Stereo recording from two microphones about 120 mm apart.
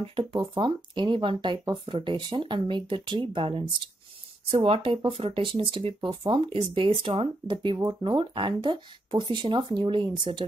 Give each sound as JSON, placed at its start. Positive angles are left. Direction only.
{"t": 0.0, "sound": "speech", "side_deg": -40}